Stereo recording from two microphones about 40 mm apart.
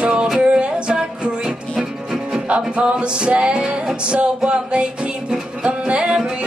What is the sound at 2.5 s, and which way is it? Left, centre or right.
Music, right.